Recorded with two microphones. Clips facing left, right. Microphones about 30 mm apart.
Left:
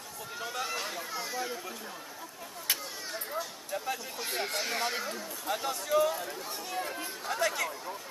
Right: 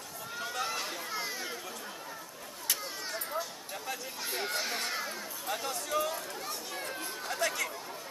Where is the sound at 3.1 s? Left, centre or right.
Centre.